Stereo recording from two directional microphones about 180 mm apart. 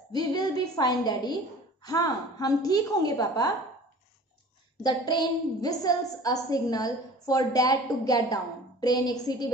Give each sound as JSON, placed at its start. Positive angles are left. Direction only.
{"t": 0.1, "sound": "a woman's voice", "side_deg": 25}
{"t": 4.8, "sound": "a woman's voice", "side_deg": 25}